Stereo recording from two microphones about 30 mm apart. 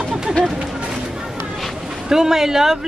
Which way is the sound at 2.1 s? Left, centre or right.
Centre.